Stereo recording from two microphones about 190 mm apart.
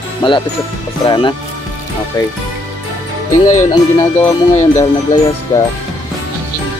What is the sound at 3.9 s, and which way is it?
Speech, 15° left (ahead or behind).